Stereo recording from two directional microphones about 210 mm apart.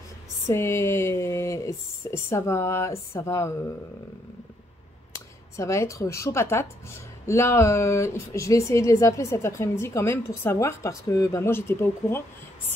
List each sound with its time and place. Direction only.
0.5 s a woman's voice: 15° left (ahead or behind)
5.6 s a woman's voice: 15° left (ahead or behind)